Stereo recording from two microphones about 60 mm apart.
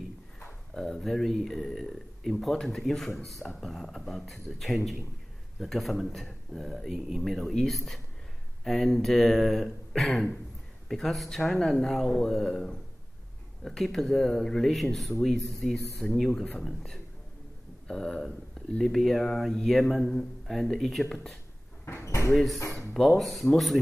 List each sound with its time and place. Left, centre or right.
0.7 s speech: centre
3.4 s speech: centre
3.9 s speech: centre
21.8 s sliding door: left
22.3 s speech: centre